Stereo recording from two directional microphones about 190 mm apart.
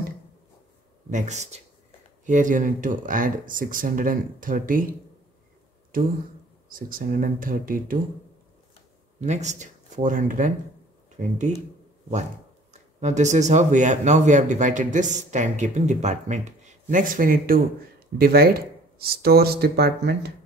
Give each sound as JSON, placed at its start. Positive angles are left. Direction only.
{"t": 1.1, "sound": "speech", "side_deg": -35}
{"t": 5.9, "sound": "speech", "side_deg": -50}
{"t": 9.2, "sound": "speech", "side_deg": -40}
{"t": 12.7, "sound": "speech", "side_deg": -40}